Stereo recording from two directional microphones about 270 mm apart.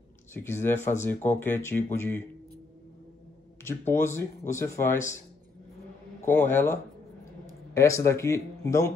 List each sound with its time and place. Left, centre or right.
0.3 s speech: centre
3.6 s speech: centre
6.2 s speech: centre